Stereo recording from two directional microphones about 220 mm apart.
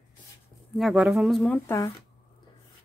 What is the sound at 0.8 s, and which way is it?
Speech, 5° right (ahead or behind).